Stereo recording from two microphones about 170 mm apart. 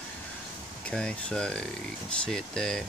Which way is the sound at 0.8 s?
5° left (ahead or behind).